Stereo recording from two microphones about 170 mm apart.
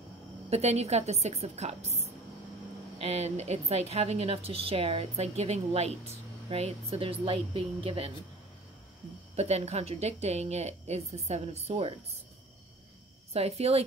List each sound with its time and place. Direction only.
0.5 s a woman's voice: 40° right (ahead or behind)
9.3 s a woman's voice: 40° right (ahead or behind)
13.3 s a woman's voice: 35° right (ahead or behind)